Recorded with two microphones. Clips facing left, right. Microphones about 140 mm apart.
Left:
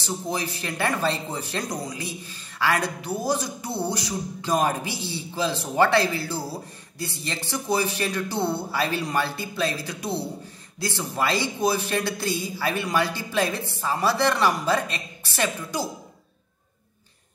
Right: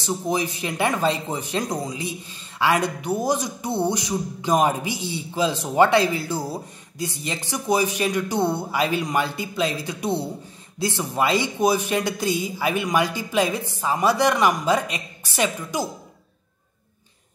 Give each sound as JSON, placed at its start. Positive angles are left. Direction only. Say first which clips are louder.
{"t": 0.0, "sound": "a man's voice", "louder": "right 5 dB", "side_deg": -20}